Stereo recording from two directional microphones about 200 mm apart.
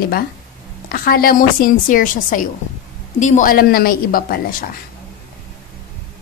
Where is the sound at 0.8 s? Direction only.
45° left (ahead or behind).